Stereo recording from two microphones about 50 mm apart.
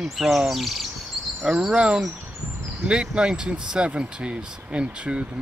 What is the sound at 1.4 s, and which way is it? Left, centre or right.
Speech, centre.